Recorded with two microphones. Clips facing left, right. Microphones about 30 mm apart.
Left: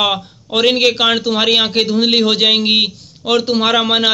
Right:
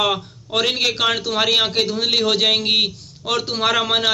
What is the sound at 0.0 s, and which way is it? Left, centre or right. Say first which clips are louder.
A man's voice: left 3 dB; left.